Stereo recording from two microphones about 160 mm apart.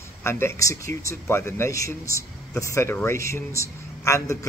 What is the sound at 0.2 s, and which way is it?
Speech, 15° left (ahead or behind).